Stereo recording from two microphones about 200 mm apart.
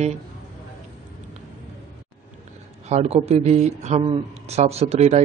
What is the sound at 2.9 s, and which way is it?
Speech, 30° right (ahead or behind).